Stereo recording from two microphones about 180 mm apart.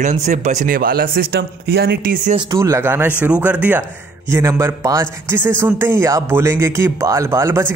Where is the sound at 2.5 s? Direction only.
15° right (ahead or behind).